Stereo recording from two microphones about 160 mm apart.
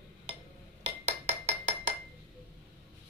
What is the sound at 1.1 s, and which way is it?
Hammer, 45° right (ahead or behind).